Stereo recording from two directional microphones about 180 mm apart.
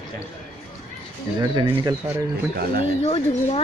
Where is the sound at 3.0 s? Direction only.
35° left (ahead or behind).